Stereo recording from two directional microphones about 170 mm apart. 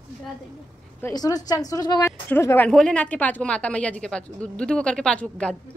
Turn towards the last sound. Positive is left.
turn(degrees=5)  # may be behind; listen again after turning